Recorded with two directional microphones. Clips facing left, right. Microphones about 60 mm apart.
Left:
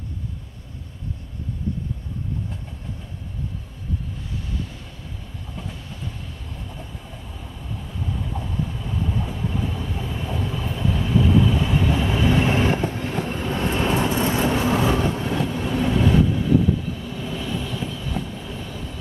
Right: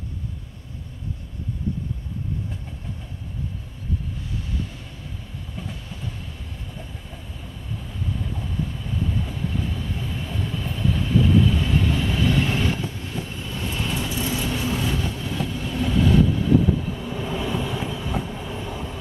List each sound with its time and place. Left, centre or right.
8.4 s vehicle: centre; by 15.8 s left
15.8 s vehicle: centre
16.8 s train: centre